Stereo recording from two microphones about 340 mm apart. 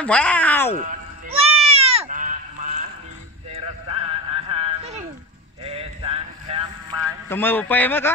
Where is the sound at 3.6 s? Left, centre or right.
Centre.